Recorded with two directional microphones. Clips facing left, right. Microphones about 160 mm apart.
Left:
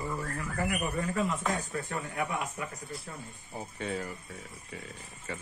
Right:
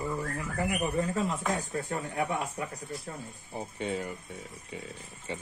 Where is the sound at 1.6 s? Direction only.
30° right (ahead or behind).